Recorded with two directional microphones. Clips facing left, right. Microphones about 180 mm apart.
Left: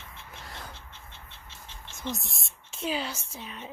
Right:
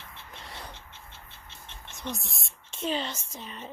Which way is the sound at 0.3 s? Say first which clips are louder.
Even; centre (ahead or behind).